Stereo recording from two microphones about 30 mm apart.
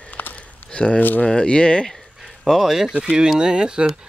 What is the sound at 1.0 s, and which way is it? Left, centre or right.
Speech, left.